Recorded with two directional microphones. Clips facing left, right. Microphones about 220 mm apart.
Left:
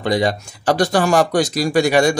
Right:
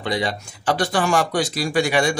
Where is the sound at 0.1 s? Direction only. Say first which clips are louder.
Left 6 dB; 40° left (ahead or behind).